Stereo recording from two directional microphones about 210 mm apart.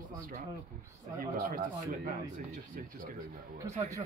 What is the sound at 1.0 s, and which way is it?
Speech, 40° right (ahead or behind).